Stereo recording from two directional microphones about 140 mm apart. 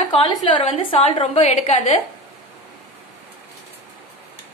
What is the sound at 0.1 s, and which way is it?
A woman's voice, 35° left (ahead or behind).